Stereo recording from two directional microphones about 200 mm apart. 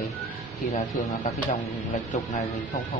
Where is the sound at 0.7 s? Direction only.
30° left (ahead or behind).